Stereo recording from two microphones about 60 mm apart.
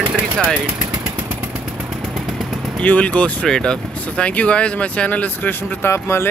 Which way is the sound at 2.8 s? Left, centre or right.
Left.